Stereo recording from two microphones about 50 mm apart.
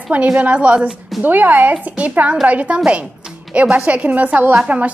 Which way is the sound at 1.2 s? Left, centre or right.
Right.